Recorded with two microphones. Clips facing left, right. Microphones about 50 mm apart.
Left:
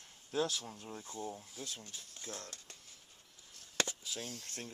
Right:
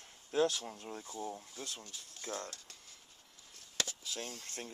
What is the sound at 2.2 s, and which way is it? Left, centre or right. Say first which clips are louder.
Speech: right 6 dB; right.